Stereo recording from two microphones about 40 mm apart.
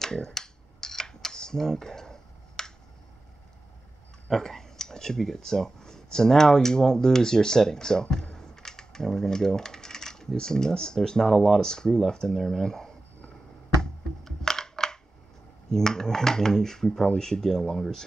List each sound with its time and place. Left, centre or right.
0.0 s computer keyboard: centre
4.3 s speech: centre
8.4 s a sound: centre
11.0 s speech: centre
11.7 s speech: centre
13.7 s a sound: centre
15.7 s speech: centre